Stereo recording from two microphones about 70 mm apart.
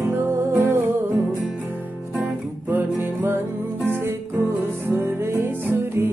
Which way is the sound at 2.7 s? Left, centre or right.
Right.